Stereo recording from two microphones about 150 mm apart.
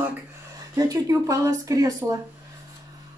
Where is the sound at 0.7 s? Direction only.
20° right (ahead or behind).